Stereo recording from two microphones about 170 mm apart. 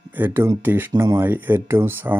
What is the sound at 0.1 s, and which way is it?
Speech, 10° right (ahead or behind).